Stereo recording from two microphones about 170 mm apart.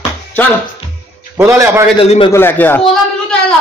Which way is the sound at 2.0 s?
40° left (ahead or behind).